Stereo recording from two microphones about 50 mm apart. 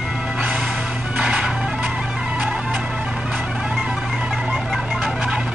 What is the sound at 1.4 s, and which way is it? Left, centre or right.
Music, centre.